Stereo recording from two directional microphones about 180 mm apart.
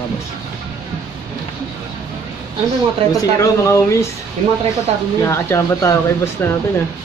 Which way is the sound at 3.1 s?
15° left (ahead or behind).